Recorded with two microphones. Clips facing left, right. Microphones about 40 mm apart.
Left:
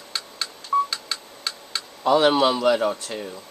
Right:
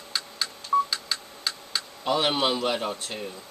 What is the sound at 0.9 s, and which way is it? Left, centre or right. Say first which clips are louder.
Tick-tock: even; centre.